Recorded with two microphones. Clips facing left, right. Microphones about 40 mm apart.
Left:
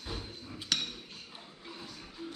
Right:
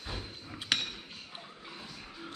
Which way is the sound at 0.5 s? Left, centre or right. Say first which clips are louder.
Right 2 dB; right.